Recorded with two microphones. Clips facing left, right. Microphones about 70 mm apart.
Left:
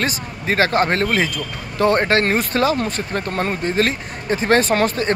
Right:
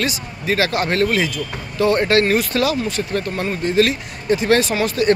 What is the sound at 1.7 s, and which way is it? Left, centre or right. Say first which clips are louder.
Speech: left 1 dB; left.